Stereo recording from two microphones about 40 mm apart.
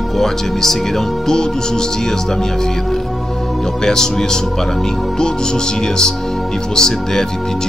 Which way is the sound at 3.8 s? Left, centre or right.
Centre.